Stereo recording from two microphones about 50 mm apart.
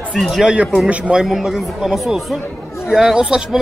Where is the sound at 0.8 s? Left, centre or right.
Right.